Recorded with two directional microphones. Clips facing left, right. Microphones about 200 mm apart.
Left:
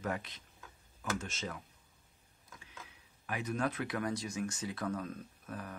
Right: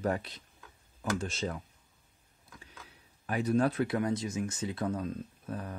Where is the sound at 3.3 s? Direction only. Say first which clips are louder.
Right 8 dB; 35° right (ahead or behind).